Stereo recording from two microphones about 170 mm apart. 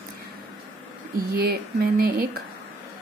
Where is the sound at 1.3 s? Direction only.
60° right (ahead or behind).